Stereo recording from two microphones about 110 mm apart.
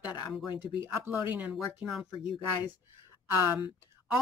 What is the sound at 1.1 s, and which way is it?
Speech, 15° right (ahead or behind).